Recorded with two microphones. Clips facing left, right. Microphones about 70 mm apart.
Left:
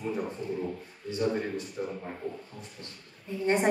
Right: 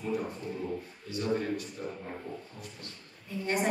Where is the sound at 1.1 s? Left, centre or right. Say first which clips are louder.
Left 2 dB; left.